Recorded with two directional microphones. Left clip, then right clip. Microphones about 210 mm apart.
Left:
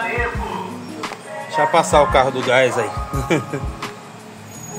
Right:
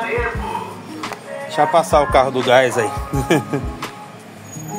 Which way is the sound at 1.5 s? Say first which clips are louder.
Right 1 dB; 25° right (ahead or behind).